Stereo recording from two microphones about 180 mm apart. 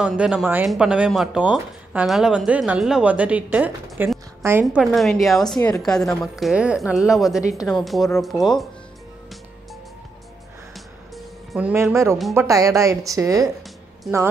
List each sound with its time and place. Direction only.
0.0 s speech: 5° right (ahead or behind)
4.9 s speech: centre (ahead or behind)
11.1 s a woman's voice: 5° right (ahead or behind)
14.0 s speech: centre (ahead or behind)